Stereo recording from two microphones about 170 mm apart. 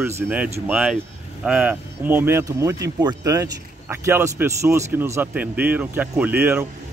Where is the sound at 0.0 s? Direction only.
10° right (ahead or behind).